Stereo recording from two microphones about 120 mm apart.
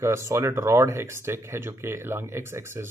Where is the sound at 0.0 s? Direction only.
25° right (ahead or behind).